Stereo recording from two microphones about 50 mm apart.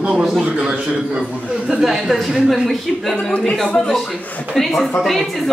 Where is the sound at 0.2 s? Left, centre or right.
Centre.